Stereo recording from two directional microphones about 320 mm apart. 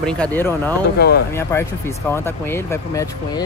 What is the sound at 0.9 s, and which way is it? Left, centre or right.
Speech, left.